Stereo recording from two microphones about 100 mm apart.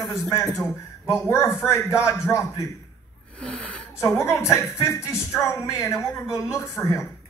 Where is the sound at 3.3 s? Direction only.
10° left (ahead or behind).